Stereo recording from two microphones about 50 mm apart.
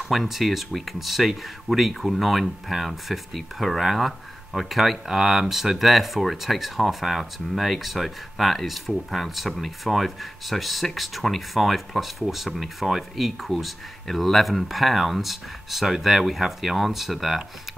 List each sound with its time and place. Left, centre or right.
0.1 s speech: centre